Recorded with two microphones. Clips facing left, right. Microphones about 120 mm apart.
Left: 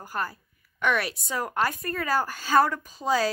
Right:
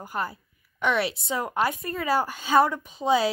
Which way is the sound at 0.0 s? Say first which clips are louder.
Right 1 dB; 20° right (ahead or behind).